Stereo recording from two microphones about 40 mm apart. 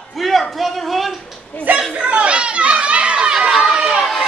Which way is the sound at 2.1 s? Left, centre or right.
Right.